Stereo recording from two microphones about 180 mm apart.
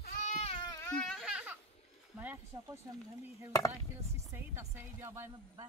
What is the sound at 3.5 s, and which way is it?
Speech, 20° left (ahead or behind).